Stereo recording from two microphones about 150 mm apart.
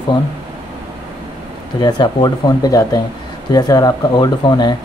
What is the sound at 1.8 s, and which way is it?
Speech, 30° left (ahead or behind).